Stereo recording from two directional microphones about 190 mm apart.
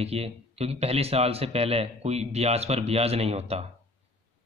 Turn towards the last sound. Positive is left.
turn(degrees=-35)  # may be behind; listen again after turning